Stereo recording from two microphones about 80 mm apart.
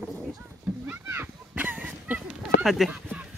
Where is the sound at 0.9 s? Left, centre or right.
Right.